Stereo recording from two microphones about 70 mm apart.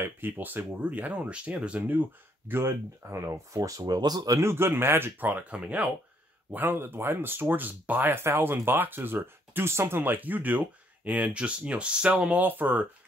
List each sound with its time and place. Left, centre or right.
0.0 s speech: right
4.3 s speech: right; by 5.9 s centre
6.5 s speech: right